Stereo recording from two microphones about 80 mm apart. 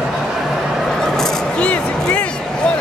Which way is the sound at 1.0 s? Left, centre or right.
Centre.